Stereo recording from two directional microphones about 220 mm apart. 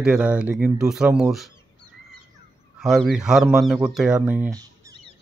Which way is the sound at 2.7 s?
5° right (ahead or behind).